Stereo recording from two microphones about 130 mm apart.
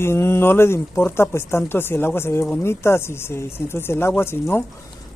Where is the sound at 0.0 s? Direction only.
20° left (ahead or behind).